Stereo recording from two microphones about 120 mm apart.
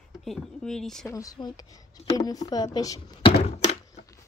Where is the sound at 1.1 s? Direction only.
30° left (ahead or behind).